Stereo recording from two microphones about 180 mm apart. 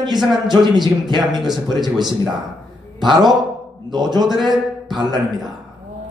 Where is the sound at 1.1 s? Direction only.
Centre (ahead or behind).